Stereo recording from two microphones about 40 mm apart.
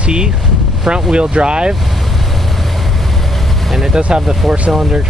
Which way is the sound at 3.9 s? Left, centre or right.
Right.